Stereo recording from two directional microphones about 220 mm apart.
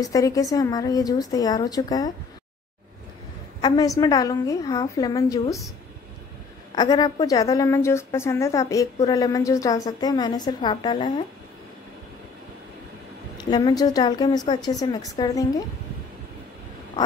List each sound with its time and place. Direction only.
0.0 s a woman's voice: 15° left (ahead or behind)
3.6 s a woman's voice: 15° left (ahead or behind)
6.7 s a woman's voice: 20° left (ahead or behind)
13.5 s a woman's voice: 20° left (ahead or behind)